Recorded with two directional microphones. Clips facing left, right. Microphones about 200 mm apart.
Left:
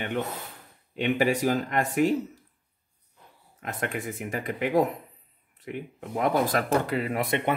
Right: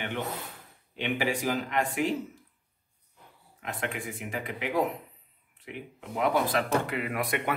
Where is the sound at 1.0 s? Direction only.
45° left (ahead or behind).